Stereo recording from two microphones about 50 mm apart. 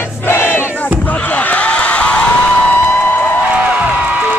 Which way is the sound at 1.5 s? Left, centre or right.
Left.